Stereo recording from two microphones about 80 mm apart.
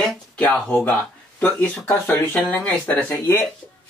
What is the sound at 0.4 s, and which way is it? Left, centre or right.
Speech, centre.